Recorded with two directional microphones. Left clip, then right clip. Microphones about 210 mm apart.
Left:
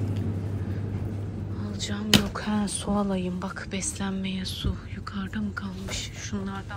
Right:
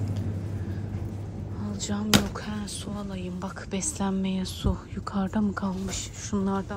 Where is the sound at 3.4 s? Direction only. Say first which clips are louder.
Left 1 dB; 15° right (ahead or behind).